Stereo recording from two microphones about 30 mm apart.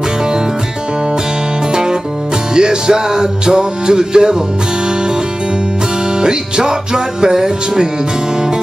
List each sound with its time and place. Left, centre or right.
1.7 s music: right
6.2 s music: right